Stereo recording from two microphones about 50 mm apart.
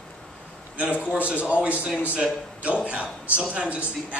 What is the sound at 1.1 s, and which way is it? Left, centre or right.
A man's voice, right.